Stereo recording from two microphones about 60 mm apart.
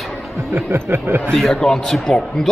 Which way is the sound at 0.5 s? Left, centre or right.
Right.